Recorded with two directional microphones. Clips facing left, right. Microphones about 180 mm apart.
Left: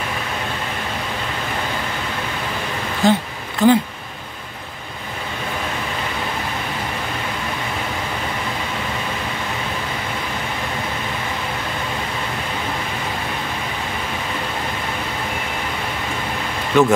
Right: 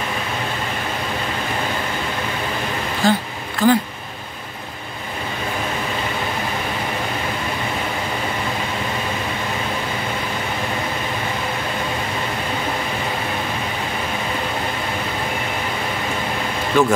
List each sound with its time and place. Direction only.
3.0 s speech: 20° left (ahead or behind)
16.7 s speech: 20° left (ahead or behind)